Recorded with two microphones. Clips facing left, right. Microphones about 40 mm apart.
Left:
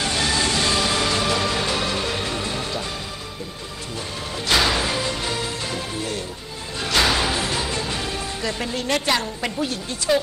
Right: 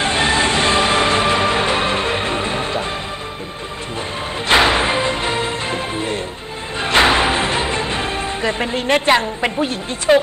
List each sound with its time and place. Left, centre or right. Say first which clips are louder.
0.0 s music: right 6 dB; right
4.5 s music: right 6 dB; right